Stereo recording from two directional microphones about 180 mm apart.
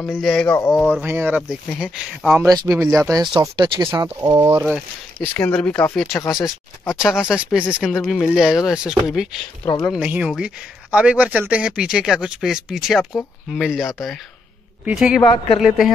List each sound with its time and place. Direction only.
0.0 s speech: 5° left (ahead or behind)
1.0 s speech: 10° right (ahead or behind)
2.4 s speech: 20° right (ahead or behind)
5.2 s speech: 5° left (ahead or behind)
15.2 s a woman's voice: 30° left (ahead or behind)